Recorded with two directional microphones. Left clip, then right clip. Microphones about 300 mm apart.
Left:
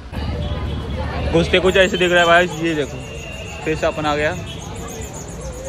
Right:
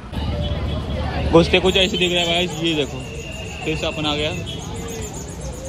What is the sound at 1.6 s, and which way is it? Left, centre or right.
Speech, centre.